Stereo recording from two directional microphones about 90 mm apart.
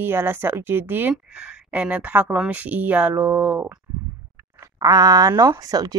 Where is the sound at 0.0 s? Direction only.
25° right (ahead or behind).